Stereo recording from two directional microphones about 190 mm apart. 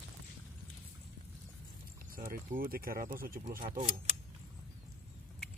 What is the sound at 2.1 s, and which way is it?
Speech, 45° right (ahead or behind).